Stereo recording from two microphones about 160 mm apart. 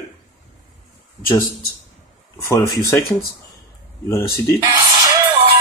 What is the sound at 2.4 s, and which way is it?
Speech, 20° left (ahead or behind).